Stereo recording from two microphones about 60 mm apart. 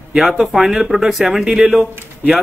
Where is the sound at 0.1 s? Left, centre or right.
Centre.